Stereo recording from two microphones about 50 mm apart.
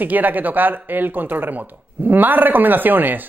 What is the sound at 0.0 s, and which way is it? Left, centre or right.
Speech, right.